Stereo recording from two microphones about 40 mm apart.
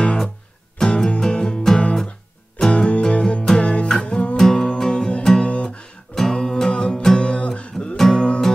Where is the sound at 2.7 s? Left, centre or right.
Left.